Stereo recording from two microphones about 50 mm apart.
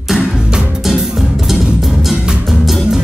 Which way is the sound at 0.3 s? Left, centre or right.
Centre.